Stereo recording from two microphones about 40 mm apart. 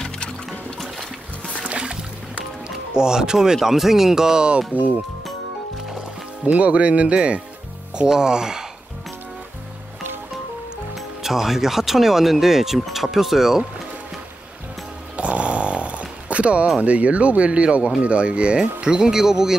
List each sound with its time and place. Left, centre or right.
1.7 s music: right
2.9 s speech: centre
4.7 s speech: right
6.4 s speech: right; by 8.6 s centre
11.0 s speech: centre
15.1 s snoring: right
16.8 s speech: right; by 19.5 s centre